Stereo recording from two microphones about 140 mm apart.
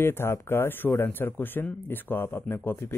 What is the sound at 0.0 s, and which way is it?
Speech, 15° left (ahead or behind).